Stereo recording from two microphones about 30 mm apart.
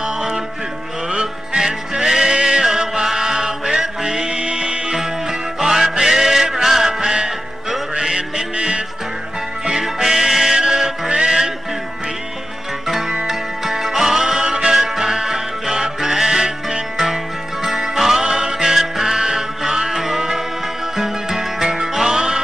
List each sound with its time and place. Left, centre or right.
0.0 s music: centre
4.3 s music: right
5.6 s music: centre
6.9 s music: right
8.5 s music: right
9.9 s music: centre
12.8 s music: centre
14.4 s music: right